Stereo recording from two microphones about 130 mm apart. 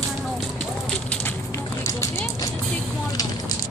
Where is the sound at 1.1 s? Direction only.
10° left (ahead or behind).